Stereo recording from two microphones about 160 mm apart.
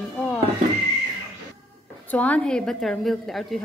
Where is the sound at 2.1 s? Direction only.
10° left (ahead or behind).